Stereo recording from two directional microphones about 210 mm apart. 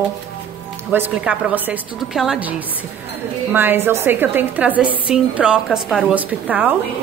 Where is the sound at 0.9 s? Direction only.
10° right (ahead or behind).